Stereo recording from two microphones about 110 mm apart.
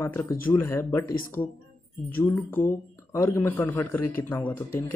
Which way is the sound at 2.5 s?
25° left (ahead or behind).